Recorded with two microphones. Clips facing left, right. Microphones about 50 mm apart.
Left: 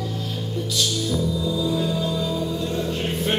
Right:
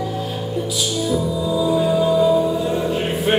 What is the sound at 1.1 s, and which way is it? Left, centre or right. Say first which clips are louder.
Music: right 4 dB; centre.